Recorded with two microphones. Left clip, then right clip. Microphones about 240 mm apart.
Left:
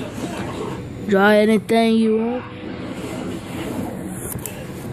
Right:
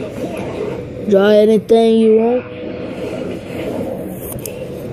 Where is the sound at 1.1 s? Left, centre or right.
Left.